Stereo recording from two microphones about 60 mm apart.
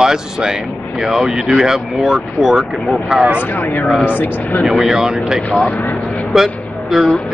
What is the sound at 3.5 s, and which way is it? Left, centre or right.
Speech, left.